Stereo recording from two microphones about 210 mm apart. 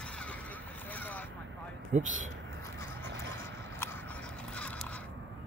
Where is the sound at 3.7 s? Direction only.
10° left (ahead or behind).